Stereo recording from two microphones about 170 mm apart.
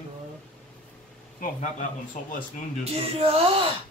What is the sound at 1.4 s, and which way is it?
Speech, 50° left (ahead or behind).